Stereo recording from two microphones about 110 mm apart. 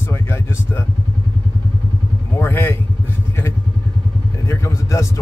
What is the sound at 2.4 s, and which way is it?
Speech, 20° left (ahead or behind).